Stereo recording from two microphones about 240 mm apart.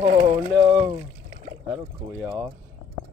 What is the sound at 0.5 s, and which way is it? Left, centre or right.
Speech, centre.